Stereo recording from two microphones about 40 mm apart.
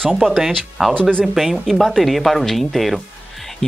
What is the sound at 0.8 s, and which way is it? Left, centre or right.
Speech, centre.